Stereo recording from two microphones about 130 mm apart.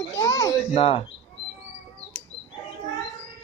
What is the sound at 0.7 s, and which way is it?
Speech, 50° left (ahead or behind).